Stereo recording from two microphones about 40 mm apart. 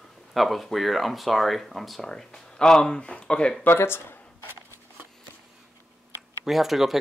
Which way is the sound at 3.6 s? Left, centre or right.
Left.